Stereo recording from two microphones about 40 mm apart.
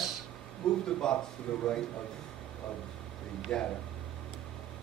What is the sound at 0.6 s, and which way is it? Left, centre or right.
Speech, centre.